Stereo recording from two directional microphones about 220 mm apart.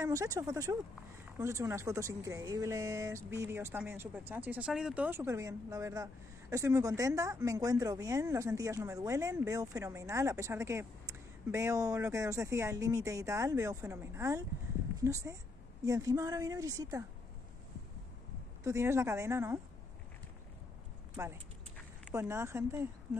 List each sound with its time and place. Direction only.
0.0 s speech: 15° right (ahead or behind)
18.6 s speech: 15° right (ahead or behind)
21.2 s speech: 10° right (ahead or behind)